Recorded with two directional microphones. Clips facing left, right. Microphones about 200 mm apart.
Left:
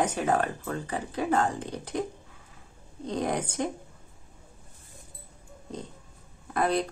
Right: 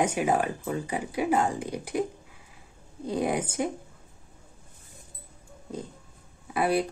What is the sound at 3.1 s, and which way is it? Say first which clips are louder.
Speech: right 2 dB; 10° right (ahead or behind).